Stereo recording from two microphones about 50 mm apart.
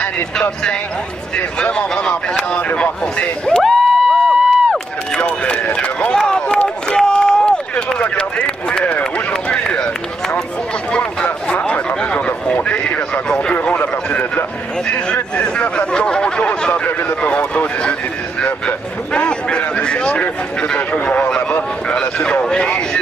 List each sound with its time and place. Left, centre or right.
0.0 s a man's voice: left
3.6 s a sound: centre
5.2 s a man's voice: left
7.0 s run: centre
8.2 s speech: centre
9.3 s run: left
10.9 s speech: centre
12.6 s a sound: left
12.9 s a man's voice: left
18.4 s a man's voice: left